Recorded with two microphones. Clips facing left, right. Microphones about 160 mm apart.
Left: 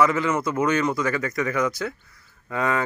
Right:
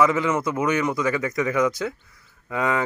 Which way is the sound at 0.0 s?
20° right (ahead or behind).